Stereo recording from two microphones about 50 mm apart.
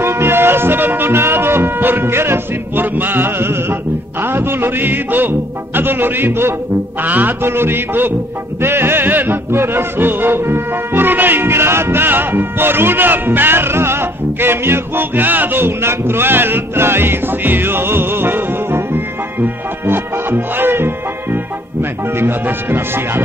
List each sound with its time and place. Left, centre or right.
0.0 s music: right
7.0 s music: right
7.4 s music: right